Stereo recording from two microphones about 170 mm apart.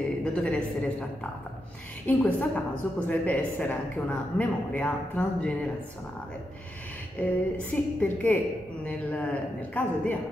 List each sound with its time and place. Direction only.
0.2 s a woman's voice: 5° left (ahead or behind)
2.0 s a woman's voice: 10° left (ahead or behind)
7.2 s a woman's voice: 10° left (ahead or behind)